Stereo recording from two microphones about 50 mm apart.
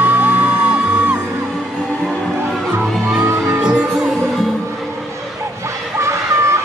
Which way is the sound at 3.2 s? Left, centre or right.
Right.